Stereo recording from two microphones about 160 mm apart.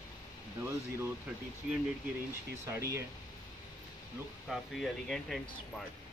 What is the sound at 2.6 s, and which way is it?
Speech, 15° right (ahead or behind).